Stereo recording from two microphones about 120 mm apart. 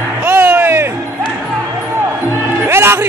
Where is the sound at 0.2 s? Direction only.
15° right (ahead or behind).